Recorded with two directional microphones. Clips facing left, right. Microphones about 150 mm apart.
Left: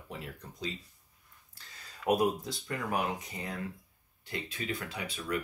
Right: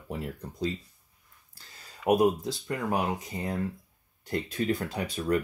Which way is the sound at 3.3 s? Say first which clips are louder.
Right 7 dB; 35° right (ahead or behind).